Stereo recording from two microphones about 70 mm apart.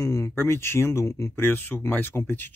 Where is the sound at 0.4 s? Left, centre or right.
Left.